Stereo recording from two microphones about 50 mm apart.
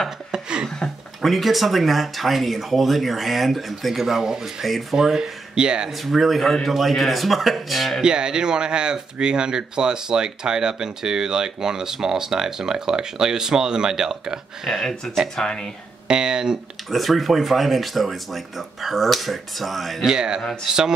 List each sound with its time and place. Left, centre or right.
0.3 s a sound: centre
1.2 s speech: centre
5.9 s speech: centre
8.0 s speech: centre
15.3 s speech: centre
16.1 s speech: centre
16.9 s speech: centre
20.1 s speech: centre